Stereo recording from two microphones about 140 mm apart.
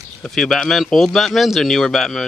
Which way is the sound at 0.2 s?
5° left (ahead or behind).